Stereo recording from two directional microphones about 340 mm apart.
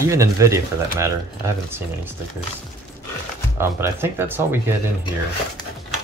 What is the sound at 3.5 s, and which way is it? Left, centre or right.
Speech, centre.